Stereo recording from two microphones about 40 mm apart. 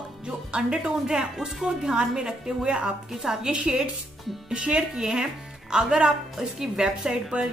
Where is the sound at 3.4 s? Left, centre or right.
Right.